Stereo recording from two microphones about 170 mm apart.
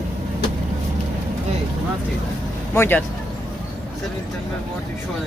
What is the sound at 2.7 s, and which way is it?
Speech, 15° left (ahead or behind).